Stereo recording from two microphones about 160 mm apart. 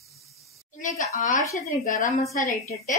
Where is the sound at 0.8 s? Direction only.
50° left (ahead or behind).